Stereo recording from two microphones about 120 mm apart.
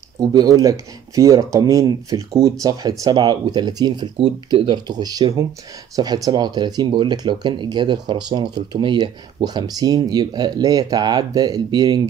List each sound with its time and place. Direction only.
0.2 s speech: 35° right (ahead or behind)